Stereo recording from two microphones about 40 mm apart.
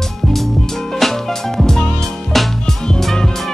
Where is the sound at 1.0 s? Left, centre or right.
Centre.